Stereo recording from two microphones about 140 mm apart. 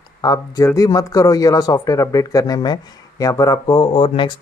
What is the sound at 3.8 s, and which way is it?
Speech, 35° left (ahead or behind).